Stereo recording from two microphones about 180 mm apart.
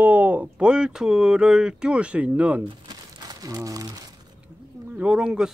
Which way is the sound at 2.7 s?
25° right (ahead or behind).